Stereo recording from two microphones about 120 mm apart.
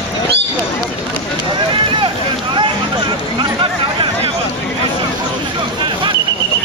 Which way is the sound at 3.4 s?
45° right (ahead or behind).